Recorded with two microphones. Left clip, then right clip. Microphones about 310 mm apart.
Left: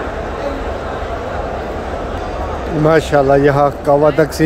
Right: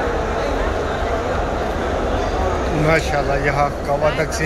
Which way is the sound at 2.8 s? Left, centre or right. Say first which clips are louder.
Left 8 dB; left.